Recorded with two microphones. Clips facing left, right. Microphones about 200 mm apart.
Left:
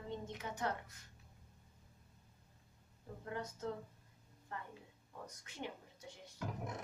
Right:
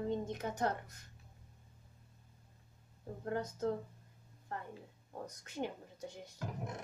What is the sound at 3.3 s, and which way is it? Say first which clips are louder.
Speech: right 7 dB; 40° right (ahead or behind).